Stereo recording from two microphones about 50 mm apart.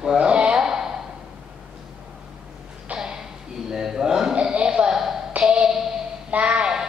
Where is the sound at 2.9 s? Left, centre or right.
Right.